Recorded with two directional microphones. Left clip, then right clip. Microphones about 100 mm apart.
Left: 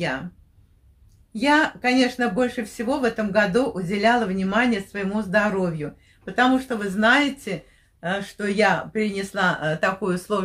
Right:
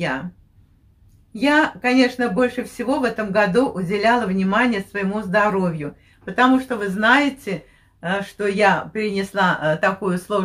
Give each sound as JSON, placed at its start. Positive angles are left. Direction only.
{"t": 1.3, "sound": "speech", "side_deg": 20}